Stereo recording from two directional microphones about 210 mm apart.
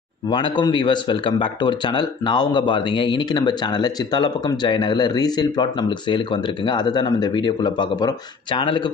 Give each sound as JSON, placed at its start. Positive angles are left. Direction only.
{"t": 0.3, "sound": "speech", "side_deg": 20}